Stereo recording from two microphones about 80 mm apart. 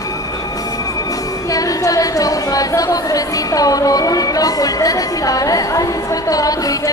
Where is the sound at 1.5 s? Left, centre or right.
Left.